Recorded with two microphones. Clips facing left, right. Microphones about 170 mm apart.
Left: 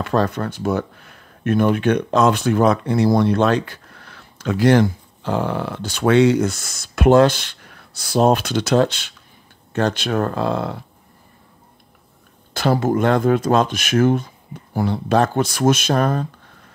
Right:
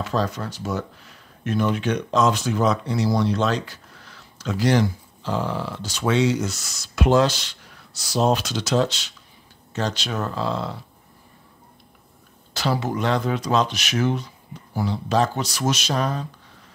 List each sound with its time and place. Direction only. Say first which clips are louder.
0.0 s speech: left 5 dB; 60° left (ahead or behind)
12.5 s speech: left 6 dB; 50° left (ahead or behind)